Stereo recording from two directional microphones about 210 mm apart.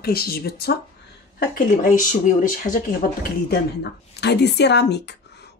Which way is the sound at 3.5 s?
50° left (ahead or behind).